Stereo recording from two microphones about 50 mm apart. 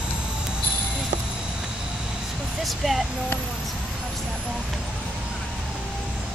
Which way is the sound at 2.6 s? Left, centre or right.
Centre.